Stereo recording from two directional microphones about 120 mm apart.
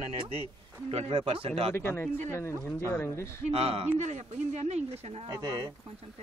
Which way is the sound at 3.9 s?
70° right (ahead or behind).